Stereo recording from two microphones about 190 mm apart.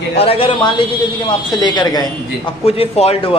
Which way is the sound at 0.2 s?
30° left (ahead or behind).